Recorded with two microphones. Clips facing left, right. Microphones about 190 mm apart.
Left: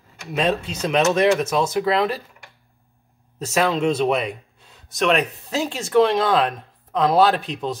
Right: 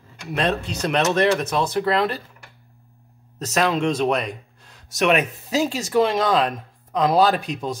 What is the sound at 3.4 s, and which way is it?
Speech, 5° left (ahead or behind).